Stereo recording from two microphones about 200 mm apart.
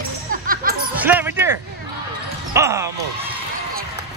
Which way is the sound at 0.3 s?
45° right (ahead or behind).